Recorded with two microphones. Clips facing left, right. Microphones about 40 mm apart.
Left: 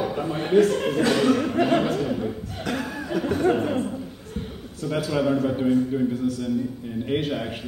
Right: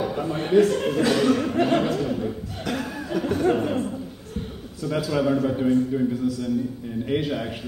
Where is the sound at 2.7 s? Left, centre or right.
Centre.